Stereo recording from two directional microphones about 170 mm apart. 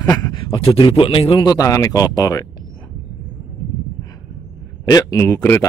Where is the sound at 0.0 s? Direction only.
20° left (ahead or behind).